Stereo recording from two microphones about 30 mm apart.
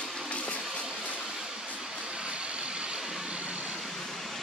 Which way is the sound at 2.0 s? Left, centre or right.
Right.